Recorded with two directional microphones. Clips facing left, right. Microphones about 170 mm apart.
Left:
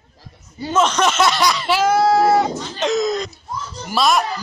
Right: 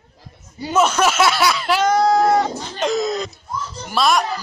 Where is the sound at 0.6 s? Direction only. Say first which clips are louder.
Even; 10° right (ahead or behind).